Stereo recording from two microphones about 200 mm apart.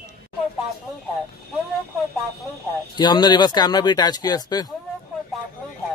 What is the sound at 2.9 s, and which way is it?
Speech, 20° left (ahead or behind).